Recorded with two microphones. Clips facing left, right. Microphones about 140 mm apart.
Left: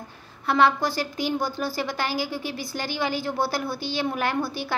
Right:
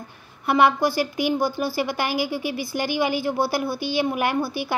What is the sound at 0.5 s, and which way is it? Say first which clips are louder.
A woman's voice: right 2 dB; 15° right (ahead or behind).